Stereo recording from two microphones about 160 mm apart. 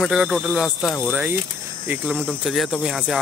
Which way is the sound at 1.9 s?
10° right (ahead or behind).